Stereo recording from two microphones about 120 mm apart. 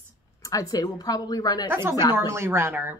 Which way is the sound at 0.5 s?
30° left (ahead or behind).